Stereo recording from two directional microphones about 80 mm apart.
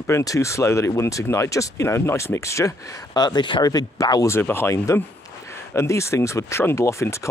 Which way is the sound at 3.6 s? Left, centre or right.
Left.